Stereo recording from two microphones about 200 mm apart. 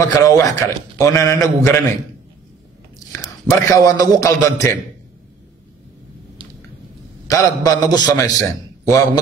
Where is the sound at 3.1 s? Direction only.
15° left (ahead or behind).